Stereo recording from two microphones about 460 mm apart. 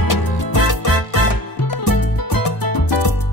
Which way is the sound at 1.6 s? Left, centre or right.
Left.